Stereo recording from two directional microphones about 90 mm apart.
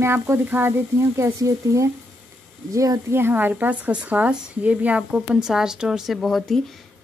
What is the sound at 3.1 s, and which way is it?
Speech, 25° right (ahead or behind).